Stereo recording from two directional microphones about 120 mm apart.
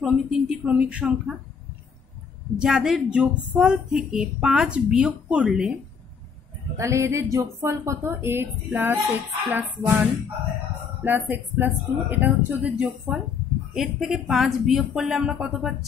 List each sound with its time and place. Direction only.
0.0 s speech: 10° right (ahead or behind)
2.6 s a woman's voice: 5° right (ahead or behind)
6.8 s a woman's voice: 25° right (ahead or behind); by 15.7 s 5° right (ahead or behind)